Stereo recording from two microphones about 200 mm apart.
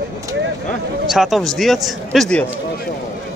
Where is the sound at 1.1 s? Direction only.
Centre (ahead or behind).